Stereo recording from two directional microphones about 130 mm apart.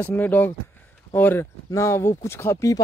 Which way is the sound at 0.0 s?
15° left (ahead or behind).